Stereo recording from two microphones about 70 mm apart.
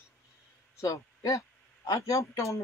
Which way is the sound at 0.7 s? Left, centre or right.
Left.